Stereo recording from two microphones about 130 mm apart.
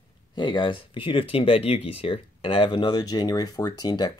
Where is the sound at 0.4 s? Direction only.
40° left (ahead or behind).